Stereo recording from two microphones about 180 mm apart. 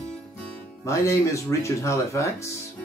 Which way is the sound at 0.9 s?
15° left (ahead or behind).